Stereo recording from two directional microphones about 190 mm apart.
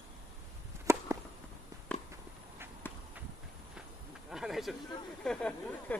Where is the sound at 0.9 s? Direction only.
15° right (ahead or behind).